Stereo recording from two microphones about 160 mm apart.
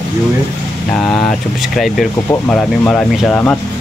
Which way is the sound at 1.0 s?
5° left (ahead or behind).